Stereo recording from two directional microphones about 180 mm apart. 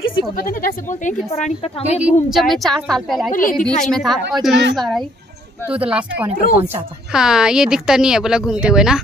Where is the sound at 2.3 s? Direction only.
Centre (ahead or behind).